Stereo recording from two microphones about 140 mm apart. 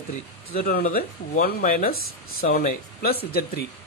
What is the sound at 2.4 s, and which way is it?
Speech, 80° left.